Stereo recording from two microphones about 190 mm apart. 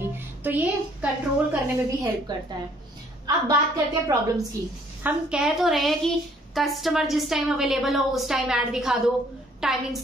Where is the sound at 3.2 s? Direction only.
20° right (ahead or behind).